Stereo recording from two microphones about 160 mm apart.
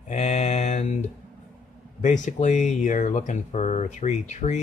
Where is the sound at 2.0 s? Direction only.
50° left (ahead or behind).